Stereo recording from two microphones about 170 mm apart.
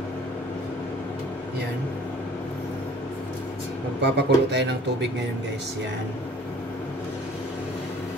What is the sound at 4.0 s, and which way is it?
Speech, 85° right.